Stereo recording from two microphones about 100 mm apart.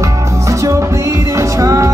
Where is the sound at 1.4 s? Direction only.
30° right (ahead or behind).